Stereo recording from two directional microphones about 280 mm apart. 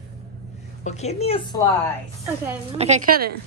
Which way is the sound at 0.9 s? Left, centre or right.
Left.